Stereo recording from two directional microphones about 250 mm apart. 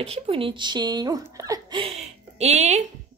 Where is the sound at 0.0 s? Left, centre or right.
Right.